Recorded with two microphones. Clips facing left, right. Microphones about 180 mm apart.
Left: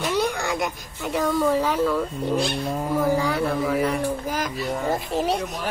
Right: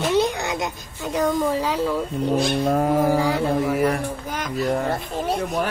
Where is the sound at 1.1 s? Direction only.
15° right (ahead or behind).